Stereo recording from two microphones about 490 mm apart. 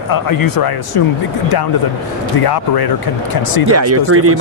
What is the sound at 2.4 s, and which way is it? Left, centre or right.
Speech, left.